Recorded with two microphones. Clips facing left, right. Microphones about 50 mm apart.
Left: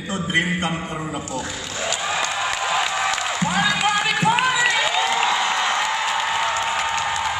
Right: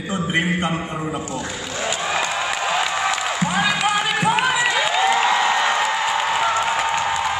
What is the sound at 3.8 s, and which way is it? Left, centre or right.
Music, centre.